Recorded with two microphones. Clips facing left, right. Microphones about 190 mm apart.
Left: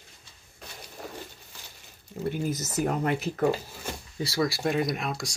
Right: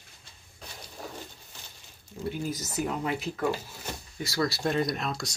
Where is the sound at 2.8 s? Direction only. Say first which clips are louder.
Left 4 dB; 45° left (ahead or behind).